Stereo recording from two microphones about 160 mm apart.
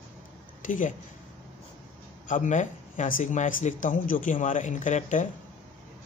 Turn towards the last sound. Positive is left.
turn(degrees=50)  # may be behind; listen again after turning